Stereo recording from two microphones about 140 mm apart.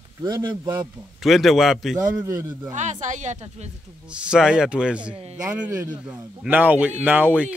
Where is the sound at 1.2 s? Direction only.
Centre (ahead or behind).